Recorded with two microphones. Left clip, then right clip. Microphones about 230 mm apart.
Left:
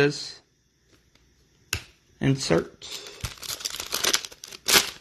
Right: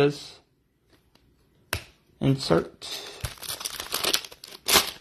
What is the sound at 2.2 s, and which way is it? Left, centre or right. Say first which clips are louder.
Speech: even; centre.